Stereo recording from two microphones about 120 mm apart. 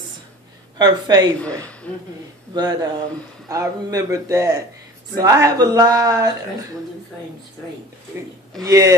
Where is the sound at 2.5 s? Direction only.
35° right (ahead or behind).